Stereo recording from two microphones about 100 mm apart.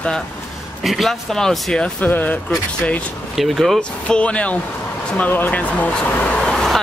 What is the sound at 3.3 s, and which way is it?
Speech, centre (ahead or behind).